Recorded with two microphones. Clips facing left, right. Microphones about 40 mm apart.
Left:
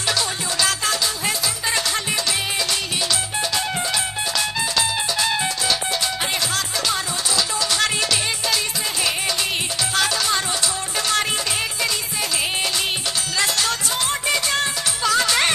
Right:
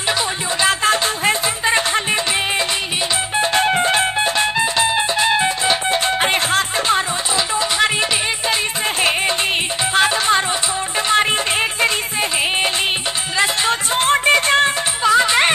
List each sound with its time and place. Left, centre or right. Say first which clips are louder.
0.6 s music: right 6 dB; right
3.3 s music: right 12 dB; right
9.9 s music: right 6 dB; right
13.4 s music: right 5 dB; right
15.0 s music: right 5 dB; right